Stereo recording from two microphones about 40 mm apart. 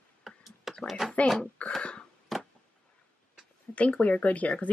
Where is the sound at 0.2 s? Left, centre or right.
Centre.